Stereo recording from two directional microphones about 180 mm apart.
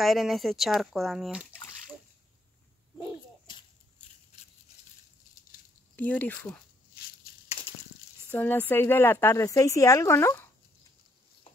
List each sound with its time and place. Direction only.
0.0 s speech: centre (ahead or behind)
5.9 s speech: 10° left (ahead or behind)
7.6 s a sound: 10° left (ahead or behind)
8.3 s speech: 10° left (ahead or behind)